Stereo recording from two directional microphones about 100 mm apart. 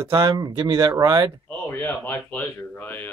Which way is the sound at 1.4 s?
20° left (ahead or behind).